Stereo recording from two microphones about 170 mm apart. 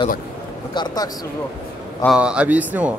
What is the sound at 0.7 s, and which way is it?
Speech, 25° left (ahead or behind).